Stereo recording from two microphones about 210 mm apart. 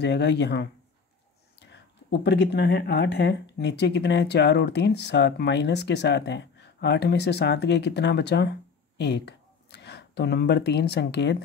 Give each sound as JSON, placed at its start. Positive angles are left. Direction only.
{"t": 0.0, "sound": "speech", "side_deg": 55}